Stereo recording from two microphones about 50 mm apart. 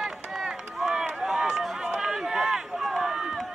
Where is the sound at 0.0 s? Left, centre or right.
Centre.